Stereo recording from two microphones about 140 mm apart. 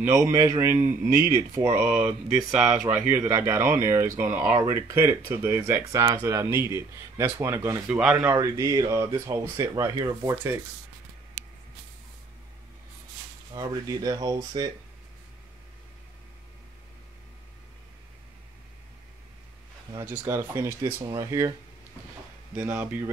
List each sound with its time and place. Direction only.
0.0 s speech: 20° right (ahead or behind)
8.0 s speech: 10° right (ahead or behind)
8.3 s speech: 25° right (ahead or behind)
13.6 s speech: 25° right (ahead or behind)
20.0 s speech: 15° right (ahead or behind)
22.6 s speech: 10° right (ahead or behind)